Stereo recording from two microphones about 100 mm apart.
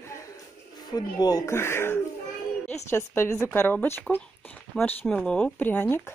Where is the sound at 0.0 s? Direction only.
30° left (ahead or behind).